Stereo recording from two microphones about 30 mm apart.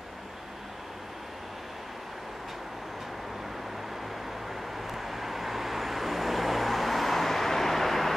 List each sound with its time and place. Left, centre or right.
4.8 s vehicle: centre